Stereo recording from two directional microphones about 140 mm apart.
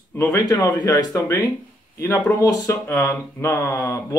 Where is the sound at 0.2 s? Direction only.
25° left (ahead or behind).